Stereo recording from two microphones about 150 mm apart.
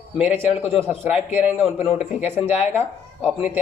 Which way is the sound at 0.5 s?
40° left (ahead or behind).